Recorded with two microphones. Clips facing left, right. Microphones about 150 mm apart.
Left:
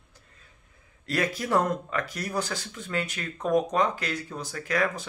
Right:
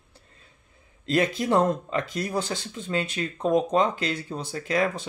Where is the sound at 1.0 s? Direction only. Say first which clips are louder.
Right 5 dB; 25° right (ahead or behind).